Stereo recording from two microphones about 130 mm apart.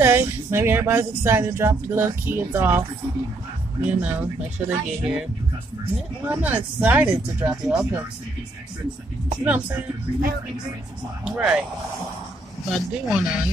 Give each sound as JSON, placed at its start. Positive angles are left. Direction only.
{"t": 0.0, "sound": "speech", "side_deg": -20}
{"t": 3.8, "sound": "speech", "side_deg": -10}
{"t": 6.2, "sound": "speech", "side_deg": -10}
{"t": 7.6, "sound": "speech", "side_deg": 0}
{"t": 9.4, "sound": "speech", "side_deg": -15}
{"t": 11.2, "sound": "speech", "side_deg": -10}
{"t": 12.6, "sound": "speech", "side_deg": 0}